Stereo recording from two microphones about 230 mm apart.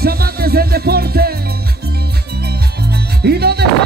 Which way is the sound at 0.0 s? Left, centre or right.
Right.